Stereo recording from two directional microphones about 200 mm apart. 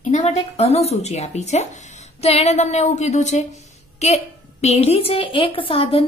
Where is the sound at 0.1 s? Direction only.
30° left (ahead or behind).